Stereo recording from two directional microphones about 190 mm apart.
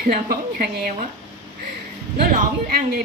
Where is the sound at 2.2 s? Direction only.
50° right (ahead or behind).